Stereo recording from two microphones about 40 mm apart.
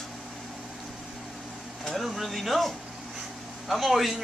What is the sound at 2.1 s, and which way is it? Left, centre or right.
Speech, centre.